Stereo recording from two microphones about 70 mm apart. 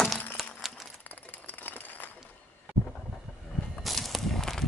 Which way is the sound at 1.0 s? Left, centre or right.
Left.